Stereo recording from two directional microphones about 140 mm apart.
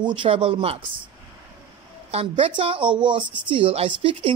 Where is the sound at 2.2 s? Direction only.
35° right (ahead or behind).